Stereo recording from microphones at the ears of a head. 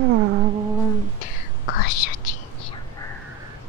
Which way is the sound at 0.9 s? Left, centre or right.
Left.